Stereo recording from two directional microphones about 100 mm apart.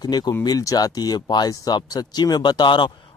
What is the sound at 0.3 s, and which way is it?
Speech, 35° left (ahead or behind).